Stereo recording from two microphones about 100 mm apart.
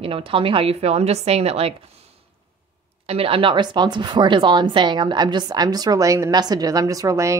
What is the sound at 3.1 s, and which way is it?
A woman's voice, 70° right (ahead or behind).